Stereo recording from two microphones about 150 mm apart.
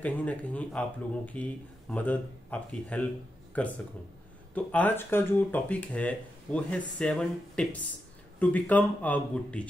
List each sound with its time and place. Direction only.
0.0 s speech: 10° left (ahead or behind)